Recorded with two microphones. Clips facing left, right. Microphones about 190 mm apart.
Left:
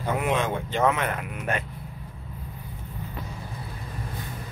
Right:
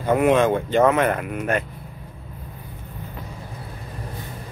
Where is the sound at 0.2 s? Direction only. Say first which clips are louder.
Right 9 dB; 55° right (ahead or behind).